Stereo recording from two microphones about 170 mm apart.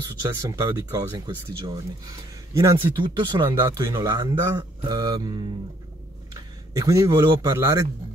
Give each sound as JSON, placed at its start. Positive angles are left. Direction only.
{"t": 0.3, "sound": "speech", "side_deg": -15}